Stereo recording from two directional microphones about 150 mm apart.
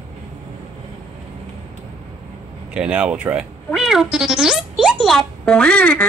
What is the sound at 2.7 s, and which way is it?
Speech, 5° right (ahead or behind).